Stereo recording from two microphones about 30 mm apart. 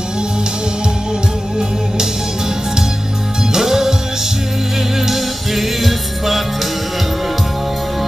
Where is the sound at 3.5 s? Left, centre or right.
Centre.